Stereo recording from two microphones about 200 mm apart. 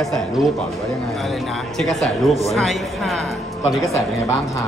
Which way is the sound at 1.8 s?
Centre (ahead or behind).